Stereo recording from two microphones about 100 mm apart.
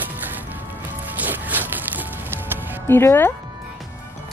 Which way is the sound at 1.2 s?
15° right (ahead or behind).